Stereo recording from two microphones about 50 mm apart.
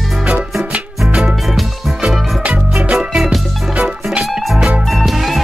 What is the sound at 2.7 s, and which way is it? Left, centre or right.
Music, centre.